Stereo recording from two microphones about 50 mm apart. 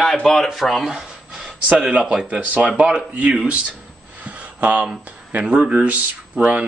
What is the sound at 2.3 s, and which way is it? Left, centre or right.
Speech, right.